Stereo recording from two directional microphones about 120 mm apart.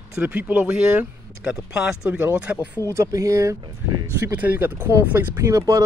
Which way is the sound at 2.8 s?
25° right (ahead or behind).